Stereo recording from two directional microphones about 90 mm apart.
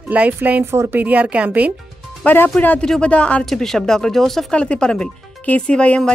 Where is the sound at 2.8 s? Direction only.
10° left (ahead or behind).